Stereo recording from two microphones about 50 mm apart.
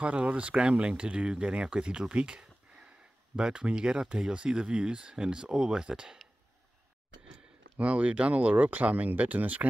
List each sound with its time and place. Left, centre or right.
0.0 s speech: right
7.7 s speech: right